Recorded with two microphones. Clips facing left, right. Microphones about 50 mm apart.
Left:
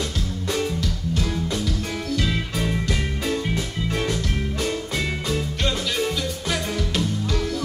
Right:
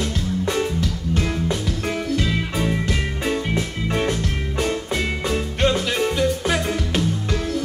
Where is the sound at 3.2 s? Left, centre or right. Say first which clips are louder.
Right 3 dB; right.